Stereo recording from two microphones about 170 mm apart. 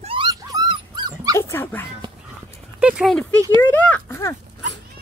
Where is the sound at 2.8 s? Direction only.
5° right (ahead or behind).